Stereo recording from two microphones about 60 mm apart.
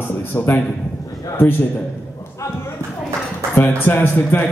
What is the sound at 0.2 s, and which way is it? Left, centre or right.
Speech, left.